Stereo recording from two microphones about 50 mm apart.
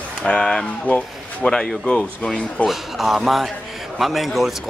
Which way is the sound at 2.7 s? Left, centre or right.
Centre.